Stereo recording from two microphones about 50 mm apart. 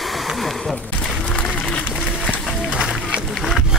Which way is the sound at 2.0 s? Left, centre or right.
Centre.